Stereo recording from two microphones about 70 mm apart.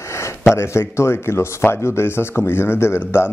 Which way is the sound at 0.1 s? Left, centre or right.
Left.